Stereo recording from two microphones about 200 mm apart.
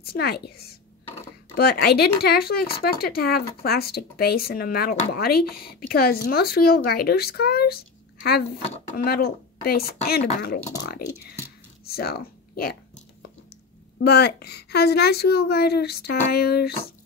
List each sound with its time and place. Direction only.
0.0 s speech: 50° left (ahead or behind)
13.9 s speech: 55° left (ahead or behind)